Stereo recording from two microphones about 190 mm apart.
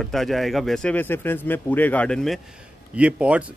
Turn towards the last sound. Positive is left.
turn(degrees=-5)  # may be behind; listen again after turning